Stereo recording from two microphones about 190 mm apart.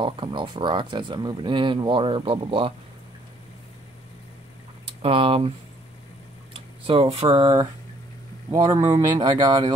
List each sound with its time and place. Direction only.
0.0 s speech: 25° right (ahead or behind)
5.0 s speech: 30° right (ahead or behind)
6.9 s speech: 30° right (ahead or behind)